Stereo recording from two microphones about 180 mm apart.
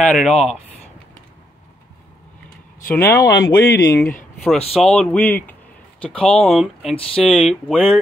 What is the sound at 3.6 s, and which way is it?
Speech, 65° left (ahead or behind).